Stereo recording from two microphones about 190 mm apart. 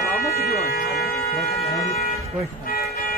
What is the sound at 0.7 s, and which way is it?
Speech, 55° left (ahead or behind).